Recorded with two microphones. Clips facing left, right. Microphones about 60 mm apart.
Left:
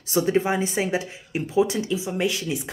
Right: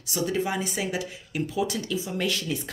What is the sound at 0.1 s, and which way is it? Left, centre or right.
Speech, left.